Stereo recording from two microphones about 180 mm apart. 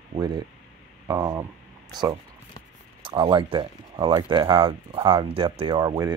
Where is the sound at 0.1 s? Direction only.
25° right (ahead or behind).